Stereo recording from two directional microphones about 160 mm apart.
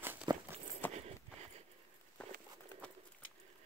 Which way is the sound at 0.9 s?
45° right (ahead or behind).